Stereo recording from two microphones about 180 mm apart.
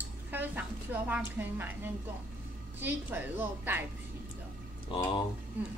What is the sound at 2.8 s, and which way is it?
A woman's voice, 10° right (ahead or behind).